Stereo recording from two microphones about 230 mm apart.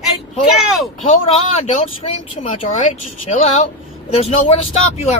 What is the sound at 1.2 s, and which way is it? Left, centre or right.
A man's voice, left.